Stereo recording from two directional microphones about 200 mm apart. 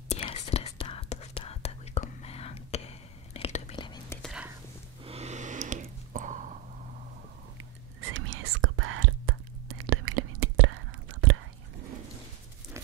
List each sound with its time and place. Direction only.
0.1 s whispering: 30° left (ahead or behind)
5.0 s a sound: 30° right (ahead or behind)
7.5 s whispering: 70° right (ahead or behind); by 11.3 s 90° right